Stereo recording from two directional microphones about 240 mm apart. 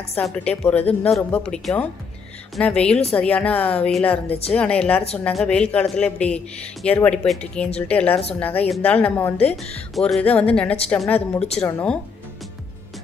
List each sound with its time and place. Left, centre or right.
0.2 s speech: centre
4.3 s speech: left
4.6 s a woman's voice: centre